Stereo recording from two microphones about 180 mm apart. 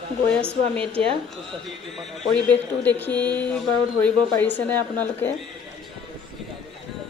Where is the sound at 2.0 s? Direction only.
5° left (ahead or behind).